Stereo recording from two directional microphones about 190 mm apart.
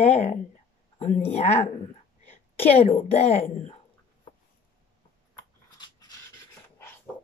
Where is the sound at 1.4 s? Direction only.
35° left (ahead or behind).